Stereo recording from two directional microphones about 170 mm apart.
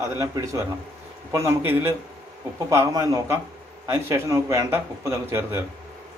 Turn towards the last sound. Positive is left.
turn(degrees=-15)  # may be behind; listen again after turning